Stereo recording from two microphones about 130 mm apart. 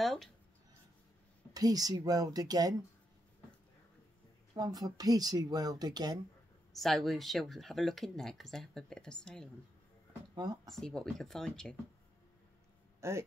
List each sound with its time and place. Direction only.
0.0 s a sound: centre (ahead or behind)
1.5 s speech: 30° right (ahead or behind)
4.6 s speech: 30° right (ahead or behind)
6.7 s speech: centre (ahead or behind)
10.3 s speech: 30° right (ahead or behind)
10.7 s speech: centre (ahead or behind)
13.0 s speech: 20° right (ahead or behind)